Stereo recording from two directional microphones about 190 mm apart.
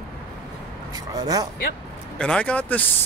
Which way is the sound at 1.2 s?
20° right (ahead or behind).